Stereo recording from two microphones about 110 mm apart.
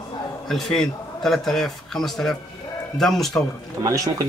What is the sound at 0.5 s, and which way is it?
A man's voice, 5° left (ahead or behind).